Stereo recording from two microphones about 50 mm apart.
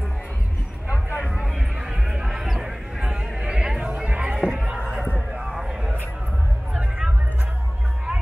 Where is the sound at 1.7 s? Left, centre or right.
Centre.